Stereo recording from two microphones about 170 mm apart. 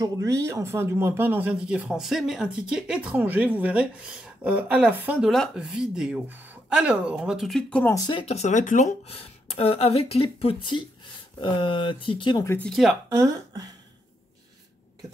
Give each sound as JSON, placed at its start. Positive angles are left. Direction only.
{"t": 0.0, "sound": "speech", "side_deg": -20}
{"t": 8.1, "sound": "a woman's voice", "side_deg": 35}
{"t": 12.6, "sound": "speech", "side_deg": 0}
{"t": 13.1, "sound": "speech", "side_deg": -15}